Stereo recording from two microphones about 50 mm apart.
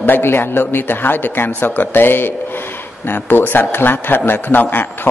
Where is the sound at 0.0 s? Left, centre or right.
Left.